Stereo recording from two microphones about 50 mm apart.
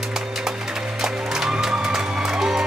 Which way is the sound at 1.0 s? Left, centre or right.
Centre.